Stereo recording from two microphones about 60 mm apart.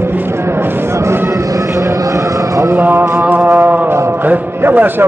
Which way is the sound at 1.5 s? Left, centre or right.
Right.